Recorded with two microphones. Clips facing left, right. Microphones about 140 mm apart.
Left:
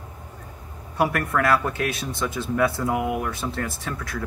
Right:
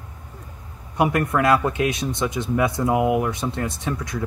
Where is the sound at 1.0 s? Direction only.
20° right (ahead or behind).